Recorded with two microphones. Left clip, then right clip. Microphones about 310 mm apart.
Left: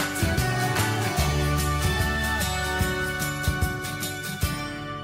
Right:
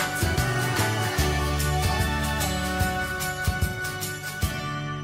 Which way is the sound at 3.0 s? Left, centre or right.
Centre.